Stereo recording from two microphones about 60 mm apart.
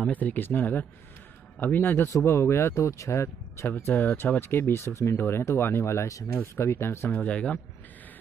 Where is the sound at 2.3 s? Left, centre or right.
Left.